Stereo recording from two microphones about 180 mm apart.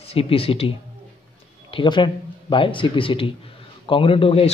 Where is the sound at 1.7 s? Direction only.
25° left (ahead or behind).